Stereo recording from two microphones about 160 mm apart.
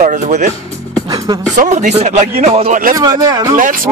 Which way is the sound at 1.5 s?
50° right (ahead or behind).